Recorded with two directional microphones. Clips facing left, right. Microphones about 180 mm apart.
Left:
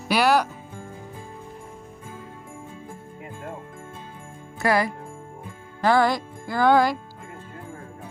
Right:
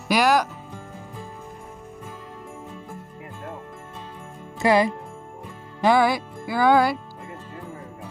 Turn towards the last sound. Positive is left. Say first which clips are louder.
# even
turn(degrees=-10)  # may be behind; listen again after turning